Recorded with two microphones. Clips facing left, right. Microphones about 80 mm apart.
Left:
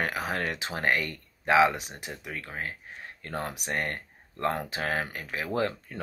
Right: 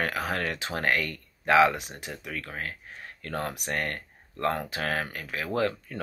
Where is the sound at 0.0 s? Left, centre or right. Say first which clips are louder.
Right 1 dB; left.